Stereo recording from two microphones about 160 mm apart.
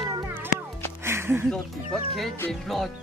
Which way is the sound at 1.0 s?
15° right (ahead or behind).